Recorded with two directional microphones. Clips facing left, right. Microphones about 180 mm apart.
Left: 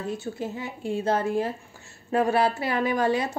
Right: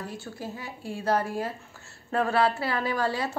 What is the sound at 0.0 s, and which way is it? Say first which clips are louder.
Speech: left 6 dB; 20° left (ahead or behind).